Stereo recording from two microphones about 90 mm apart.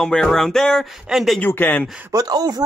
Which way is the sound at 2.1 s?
45° right (ahead or behind).